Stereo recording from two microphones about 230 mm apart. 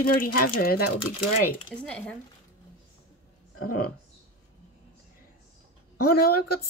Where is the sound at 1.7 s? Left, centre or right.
Centre.